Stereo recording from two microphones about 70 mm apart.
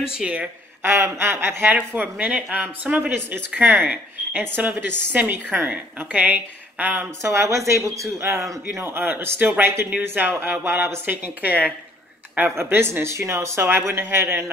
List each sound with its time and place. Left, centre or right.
0.8 s speech: right
2.0 s speech: right
7.1 s speech: right